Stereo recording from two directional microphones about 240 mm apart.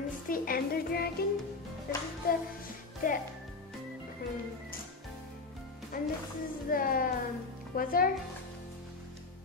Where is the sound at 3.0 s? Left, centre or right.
Left.